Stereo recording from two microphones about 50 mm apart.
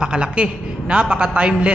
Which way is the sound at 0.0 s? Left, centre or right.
Centre.